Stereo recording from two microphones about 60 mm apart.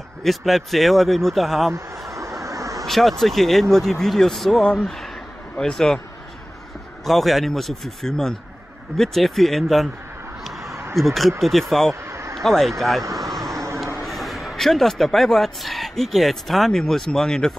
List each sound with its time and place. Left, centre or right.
0.2 s speech: centre
1.7 s a sound: right
2.4 s vehicle: right
2.9 s a man's voice: centre
7.1 s speech: centre
11.0 s speech: centre
11.9 s a sound: right
12.4 s speech: centre
13.0 s vehicle: right
14.0 s speech: centre